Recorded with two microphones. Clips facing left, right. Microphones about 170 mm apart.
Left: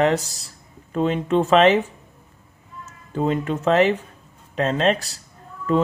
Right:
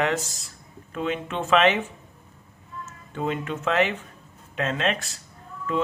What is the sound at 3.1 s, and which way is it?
Speech, 35° left (ahead or behind).